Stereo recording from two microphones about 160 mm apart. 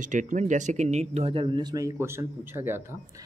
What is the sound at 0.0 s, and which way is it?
Speech, 55° right (ahead or behind).